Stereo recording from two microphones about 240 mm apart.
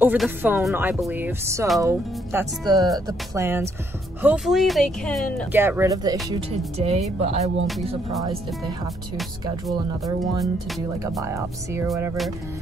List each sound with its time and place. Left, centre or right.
0.0 s speech: centre
5.5 s speech: centre
7.2 s speech: right
11.2 s speech: centre